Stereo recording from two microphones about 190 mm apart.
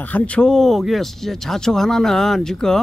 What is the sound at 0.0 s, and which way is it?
Speech, 10° left (ahead or behind).